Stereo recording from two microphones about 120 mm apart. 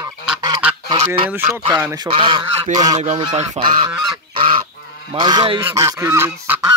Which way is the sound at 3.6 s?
65° right (ahead or behind).